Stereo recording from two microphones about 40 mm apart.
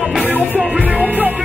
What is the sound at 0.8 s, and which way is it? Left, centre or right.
Music, right.